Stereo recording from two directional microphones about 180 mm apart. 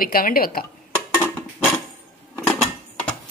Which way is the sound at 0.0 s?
55° left (ahead or behind).